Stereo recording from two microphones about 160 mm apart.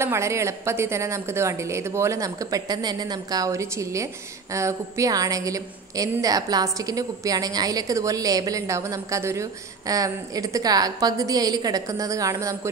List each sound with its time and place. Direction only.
0.0 s a woman's voice: 15° right (ahead or behind)